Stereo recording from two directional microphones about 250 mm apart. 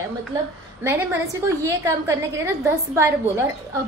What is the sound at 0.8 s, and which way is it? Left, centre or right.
A woman's voice, centre.